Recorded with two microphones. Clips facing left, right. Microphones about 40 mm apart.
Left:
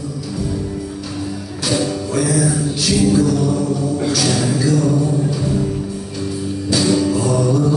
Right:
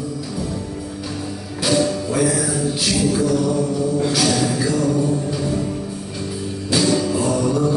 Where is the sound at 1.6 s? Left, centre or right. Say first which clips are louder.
Right 1 dB; centre.